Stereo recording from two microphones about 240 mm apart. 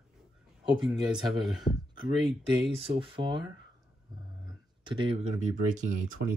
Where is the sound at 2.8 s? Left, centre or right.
Right.